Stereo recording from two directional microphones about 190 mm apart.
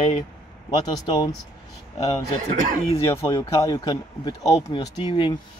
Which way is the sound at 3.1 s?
15° left (ahead or behind).